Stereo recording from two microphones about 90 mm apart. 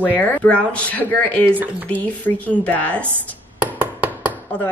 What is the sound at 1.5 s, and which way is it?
Dishes, 20° right (ahead or behind).